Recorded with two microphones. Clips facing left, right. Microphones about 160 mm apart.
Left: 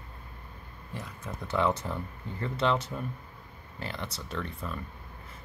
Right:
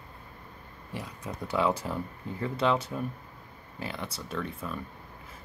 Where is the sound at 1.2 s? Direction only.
10° right (ahead or behind).